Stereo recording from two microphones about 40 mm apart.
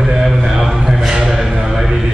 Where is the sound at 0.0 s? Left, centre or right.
Centre.